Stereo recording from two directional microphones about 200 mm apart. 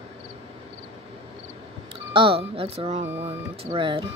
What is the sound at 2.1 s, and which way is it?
Speech, 25° right (ahead or behind).